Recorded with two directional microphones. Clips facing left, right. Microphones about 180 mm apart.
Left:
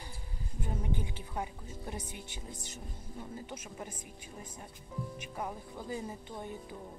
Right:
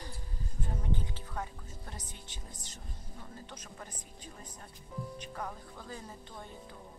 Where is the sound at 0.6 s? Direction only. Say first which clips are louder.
Left 1 dB; 10° left (ahead or behind).